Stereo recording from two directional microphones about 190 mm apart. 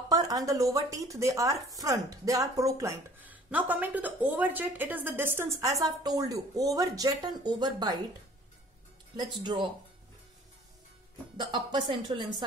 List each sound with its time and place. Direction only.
0.1 s a woman's voice: 20° right (ahead or behind)
9.1 s a woman's voice: 25° right (ahead or behind)
11.3 s a woman's voice: 25° right (ahead or behind)